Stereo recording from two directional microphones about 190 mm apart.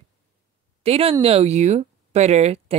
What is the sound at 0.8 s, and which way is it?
Speech, 30° right (ahead or behind).